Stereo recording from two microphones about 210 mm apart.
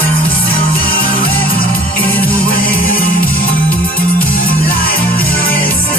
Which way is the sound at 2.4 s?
45° left (ahead or behind).